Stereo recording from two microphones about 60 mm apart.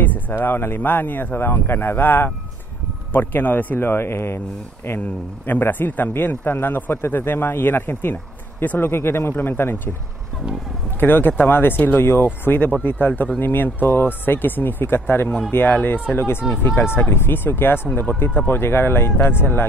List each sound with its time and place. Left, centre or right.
0.0 s a man's voice: left
5.0 s a man's voice: left
11.0 s a man's voice: left
12.0 s speech: left
12.4 s a man's voice: left